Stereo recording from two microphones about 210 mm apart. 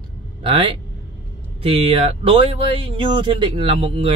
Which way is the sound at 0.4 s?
25° right (ahead or behind).